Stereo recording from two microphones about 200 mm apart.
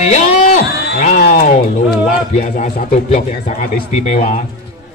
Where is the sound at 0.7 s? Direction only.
55° left (ahead or behind).